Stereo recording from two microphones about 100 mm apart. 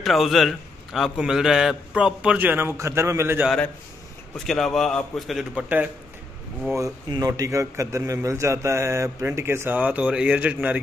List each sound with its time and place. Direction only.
0.0 s a man's voice: centre (ahead or behind)
2.3 s a man's voice: 20° right (ahead or behind)
4.5 s a man's voice: centre (ahead or behind)
5.5 s speech: 15° right (ahead or behind)
7.1 s a man's voice: 35° right (ahead or behind)
9.8 s speech: 10° right (ahead or behind)